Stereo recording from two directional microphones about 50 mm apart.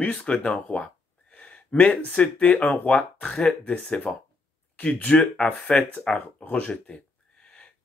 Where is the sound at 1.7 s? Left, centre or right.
Left.